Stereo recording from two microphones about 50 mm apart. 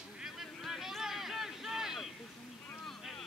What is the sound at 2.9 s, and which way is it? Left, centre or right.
Vehicle, centre.